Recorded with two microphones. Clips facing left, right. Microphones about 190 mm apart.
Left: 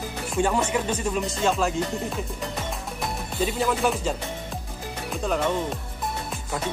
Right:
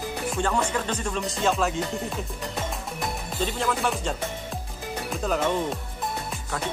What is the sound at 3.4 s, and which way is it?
Music, 5° left (ahead or behind).